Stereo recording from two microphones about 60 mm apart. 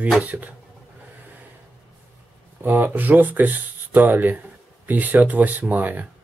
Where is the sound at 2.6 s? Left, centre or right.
Right.